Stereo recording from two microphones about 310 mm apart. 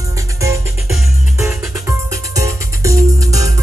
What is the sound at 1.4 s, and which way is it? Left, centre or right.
Music, centre.